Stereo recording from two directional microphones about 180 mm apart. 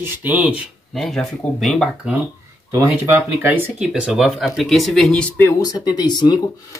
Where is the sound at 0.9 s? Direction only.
Centre (ahead or behind).